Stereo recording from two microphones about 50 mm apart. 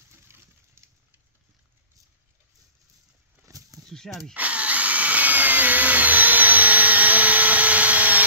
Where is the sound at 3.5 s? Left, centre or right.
Right.